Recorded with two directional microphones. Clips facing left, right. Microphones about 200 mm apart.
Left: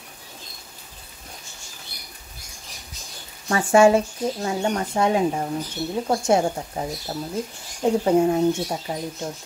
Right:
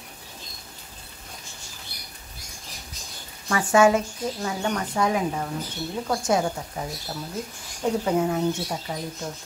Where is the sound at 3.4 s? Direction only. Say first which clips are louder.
Left 3 dB; 30° left (ahead or behind).